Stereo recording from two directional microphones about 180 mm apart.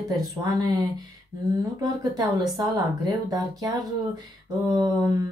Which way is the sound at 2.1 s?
20° right (ahead or behind).